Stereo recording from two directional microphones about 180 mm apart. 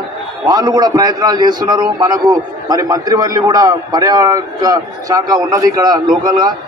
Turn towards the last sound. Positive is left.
turn(degrees=-25)  # may be behind; listen again after turning